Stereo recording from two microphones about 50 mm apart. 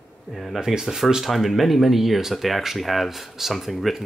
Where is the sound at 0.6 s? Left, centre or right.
Centre.